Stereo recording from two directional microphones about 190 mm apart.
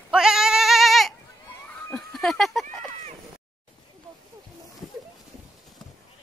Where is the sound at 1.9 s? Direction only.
5° left (ahead or behind).